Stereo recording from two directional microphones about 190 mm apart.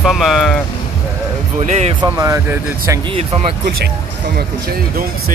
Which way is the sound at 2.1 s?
15° right (ahead or behind).